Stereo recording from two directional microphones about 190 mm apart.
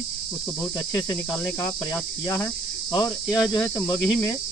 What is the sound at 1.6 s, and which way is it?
Cricket, 15° left (ahead or behind).